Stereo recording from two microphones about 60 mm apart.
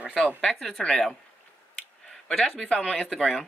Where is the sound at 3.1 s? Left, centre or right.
Centre.